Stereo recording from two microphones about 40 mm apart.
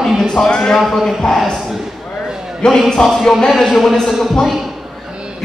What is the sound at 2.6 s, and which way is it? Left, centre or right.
Speech, left.